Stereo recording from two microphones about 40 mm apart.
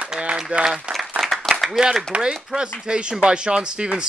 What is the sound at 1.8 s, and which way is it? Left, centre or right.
A man's voice, right.